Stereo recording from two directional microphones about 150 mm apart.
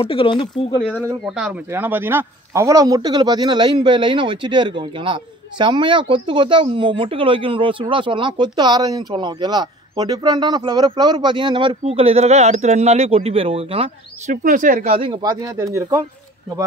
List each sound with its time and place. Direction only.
0.0 s speech: 35° left (ahead or behind)
1.2 s speech: 5° right (ahead or behind); by 14.3 s 40° right (ahead or behind)
14.3 s speech: 60° right (ahead or behind)
14.9 s speech: 40° right (ahead or behind)
15.2 s speech: 25° right (ahead or behind)